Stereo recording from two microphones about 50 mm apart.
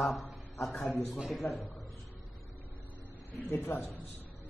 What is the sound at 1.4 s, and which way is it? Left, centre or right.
Speech, left.